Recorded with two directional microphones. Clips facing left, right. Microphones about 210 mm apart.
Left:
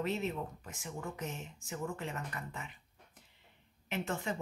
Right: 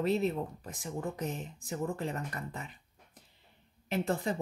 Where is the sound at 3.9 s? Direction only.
35° right (ahead or behind).